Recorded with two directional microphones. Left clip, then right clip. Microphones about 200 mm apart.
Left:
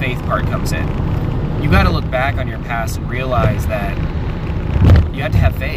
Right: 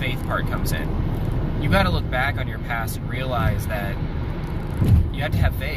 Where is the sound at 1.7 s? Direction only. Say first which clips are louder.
Left 5 dB; 5° left (ahead or behind).